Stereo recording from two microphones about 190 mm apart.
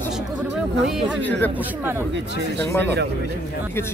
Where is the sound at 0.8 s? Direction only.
Centre (ahead or behind).